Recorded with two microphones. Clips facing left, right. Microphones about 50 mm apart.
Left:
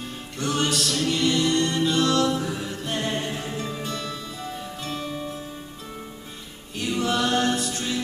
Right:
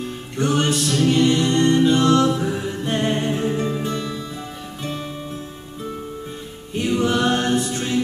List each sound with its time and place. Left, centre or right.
0.4 s music: right
6.7 s a capella: right